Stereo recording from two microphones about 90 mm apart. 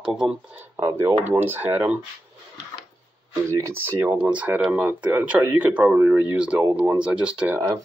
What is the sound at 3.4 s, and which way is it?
Speech, 35° right (ahead or behind).